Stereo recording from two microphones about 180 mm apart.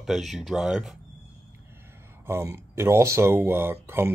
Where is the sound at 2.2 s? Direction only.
15° right (ahead or behind).